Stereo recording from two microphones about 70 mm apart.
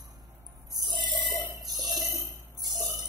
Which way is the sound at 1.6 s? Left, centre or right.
Right.